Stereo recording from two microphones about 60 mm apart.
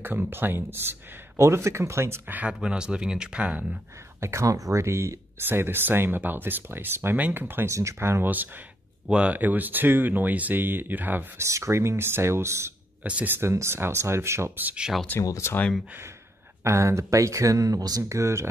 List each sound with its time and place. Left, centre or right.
0.0 s speech: right
2.6 s speech: centre
4.2 s speech: right
4.5 s speech: right
5.4 s speech: right
7.7 s speech: right
9.0 s speech: centre
9.3 s speech: right
11.3 s speech: right
13.0 s speech: right
13.4 s speech: right
16.6 s speech: right